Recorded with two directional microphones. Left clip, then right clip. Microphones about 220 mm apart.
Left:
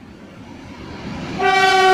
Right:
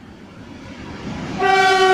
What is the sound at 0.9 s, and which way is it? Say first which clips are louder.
Train: even; 40° left (ahead or behind).